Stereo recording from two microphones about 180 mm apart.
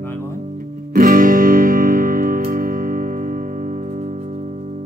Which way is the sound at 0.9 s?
50° right (ahead or behind).